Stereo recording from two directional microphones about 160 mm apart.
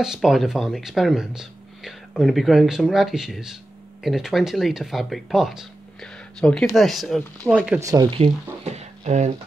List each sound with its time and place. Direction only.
0.0 s speech: 5° right (ahead or behind)
7.8 s speech: 20° right (ahead or behind)
8.1 s speech: 40° right (ahead or behind)